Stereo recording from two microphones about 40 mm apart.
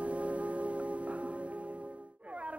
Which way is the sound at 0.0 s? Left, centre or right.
Right.